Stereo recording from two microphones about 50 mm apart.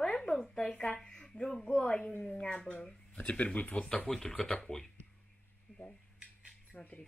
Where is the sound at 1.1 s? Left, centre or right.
Centre.